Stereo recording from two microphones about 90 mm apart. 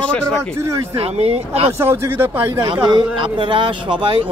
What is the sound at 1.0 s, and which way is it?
Speech, 90° right.